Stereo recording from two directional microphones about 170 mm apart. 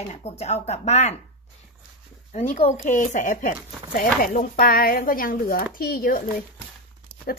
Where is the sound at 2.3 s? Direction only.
40° left (ahead or behind); by 6.2 s 60° left (ahead or behind).